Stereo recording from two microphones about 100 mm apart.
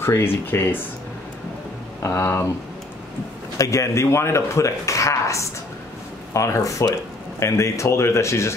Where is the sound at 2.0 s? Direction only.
25° left (ahead or behind).